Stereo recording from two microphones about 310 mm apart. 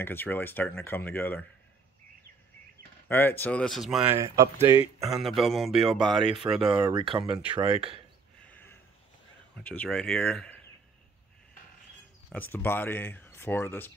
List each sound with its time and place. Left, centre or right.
0.0 s speech: centre
3.1 s speech: centre
6.7 s speech: centre
8.5 s a sound: centre
9.6 s speech: centre
12.3 s speech: centre